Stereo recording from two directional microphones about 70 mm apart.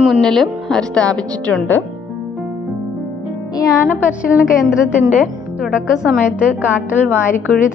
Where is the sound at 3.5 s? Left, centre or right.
Left.